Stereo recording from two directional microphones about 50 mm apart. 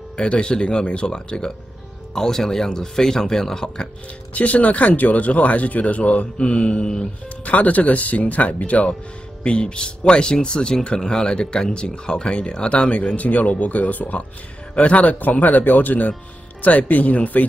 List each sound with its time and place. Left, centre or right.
0.2 s speech: centre
4.3 s speech: left
7.4 s speech: left